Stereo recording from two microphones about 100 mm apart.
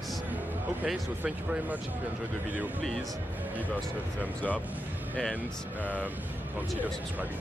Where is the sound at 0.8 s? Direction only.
10° right (ahead or behind).